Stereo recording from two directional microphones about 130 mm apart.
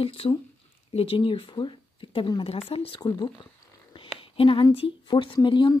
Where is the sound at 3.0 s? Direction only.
35° left (ahead or behind).